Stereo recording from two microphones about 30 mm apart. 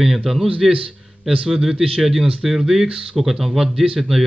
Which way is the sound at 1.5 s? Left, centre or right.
Centre.